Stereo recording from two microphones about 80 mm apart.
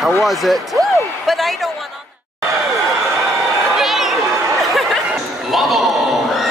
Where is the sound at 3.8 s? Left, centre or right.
Centre.